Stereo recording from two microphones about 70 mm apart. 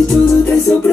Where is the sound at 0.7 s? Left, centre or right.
Centre.